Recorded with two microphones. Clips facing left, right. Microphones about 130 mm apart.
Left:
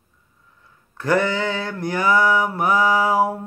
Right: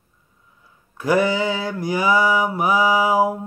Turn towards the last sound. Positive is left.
turn(degrees=-5)  # may be behind; listen again after turning